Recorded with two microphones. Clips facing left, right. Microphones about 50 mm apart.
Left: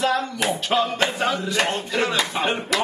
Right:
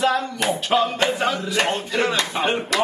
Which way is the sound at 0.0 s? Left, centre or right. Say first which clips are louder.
Right 1 dB; centre.